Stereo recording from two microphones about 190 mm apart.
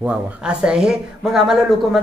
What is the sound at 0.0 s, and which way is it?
A woman's voice, 5° right (ahead or behind).